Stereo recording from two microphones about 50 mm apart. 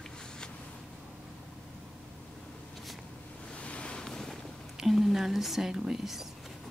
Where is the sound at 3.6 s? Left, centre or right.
Left.